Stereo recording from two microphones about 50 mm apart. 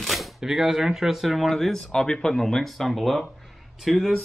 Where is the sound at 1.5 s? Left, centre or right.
Centre.